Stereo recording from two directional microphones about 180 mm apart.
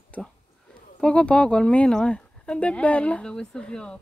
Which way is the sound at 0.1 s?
5° left (ahead or behind).